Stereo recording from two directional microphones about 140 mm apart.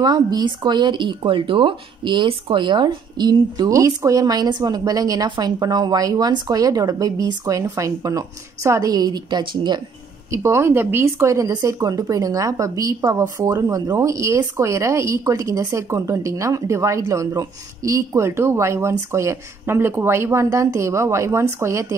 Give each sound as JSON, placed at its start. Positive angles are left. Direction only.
{"t": 0.0, "sound": "speech", "side_deg": -30}
{"t": 10.3, "sound": "speech", "side_deg": -20}